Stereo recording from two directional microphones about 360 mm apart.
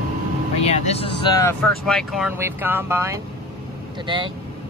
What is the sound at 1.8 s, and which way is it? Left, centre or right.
Speech, centre.